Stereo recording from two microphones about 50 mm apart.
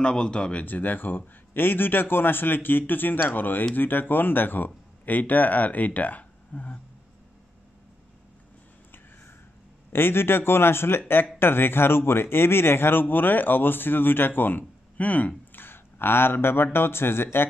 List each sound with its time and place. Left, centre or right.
0.0 s speech: centre
0.7 s speech: left
9.9 s speech: left